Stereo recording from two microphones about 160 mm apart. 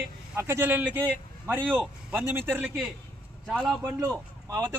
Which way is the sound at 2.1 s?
10° right (ahead or behind).